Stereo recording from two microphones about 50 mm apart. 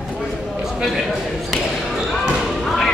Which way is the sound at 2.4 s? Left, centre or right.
Centre.